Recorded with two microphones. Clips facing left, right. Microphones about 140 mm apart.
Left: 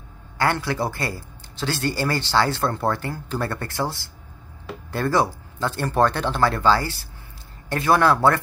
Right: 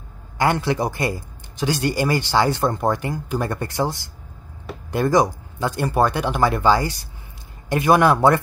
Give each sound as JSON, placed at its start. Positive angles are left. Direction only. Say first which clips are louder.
{"t": 0.4, "sound": "a man's voice", "louder": "right 3 dB", "side_deg": -20}